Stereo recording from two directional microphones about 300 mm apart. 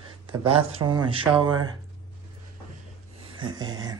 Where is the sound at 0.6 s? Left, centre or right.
Centre.